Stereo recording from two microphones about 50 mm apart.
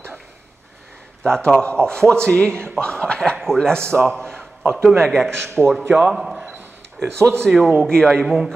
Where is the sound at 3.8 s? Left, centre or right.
Right.